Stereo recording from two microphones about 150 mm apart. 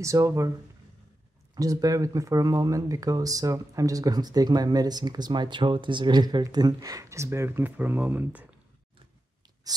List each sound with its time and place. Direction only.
0.0 s speech: 20° right (ahead or behind)
1.5 s speech: 25° right (ahead or behind)
9.6 s writing: 25° right (ahead or behind)